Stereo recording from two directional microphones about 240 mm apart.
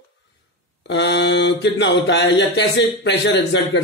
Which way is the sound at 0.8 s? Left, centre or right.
Left.